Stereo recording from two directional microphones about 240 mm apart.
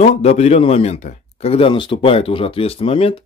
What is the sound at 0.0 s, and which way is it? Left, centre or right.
Speech, left.